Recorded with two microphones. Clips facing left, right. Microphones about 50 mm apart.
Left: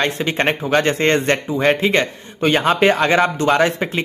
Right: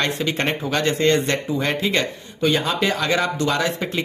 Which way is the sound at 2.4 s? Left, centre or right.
Left.